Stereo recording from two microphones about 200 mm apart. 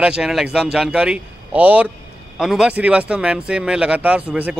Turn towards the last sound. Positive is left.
turn(degrees=-5)  # may be behind; listen again after turning